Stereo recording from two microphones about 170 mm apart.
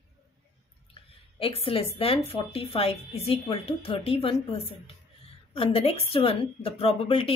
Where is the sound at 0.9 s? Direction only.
35° left (ahead or behind).